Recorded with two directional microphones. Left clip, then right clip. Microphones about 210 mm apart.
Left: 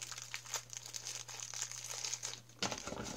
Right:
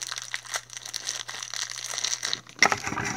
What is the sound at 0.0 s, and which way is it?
Crumpling, 35° right (ahead or behind).